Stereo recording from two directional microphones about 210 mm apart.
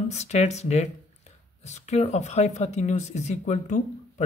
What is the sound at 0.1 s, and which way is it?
Speech, 30° left (ahead or behind).